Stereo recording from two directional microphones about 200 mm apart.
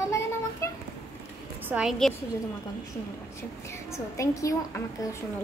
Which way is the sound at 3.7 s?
15° left (ahead or behind).